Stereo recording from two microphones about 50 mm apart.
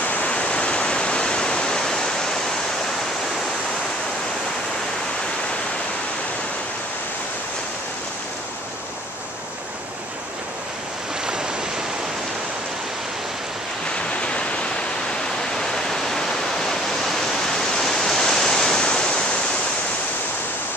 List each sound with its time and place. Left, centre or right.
0.0 s waterfall: left; by 2.3 s centre
13.9 s a sound: left
15.5 s waterfall: centre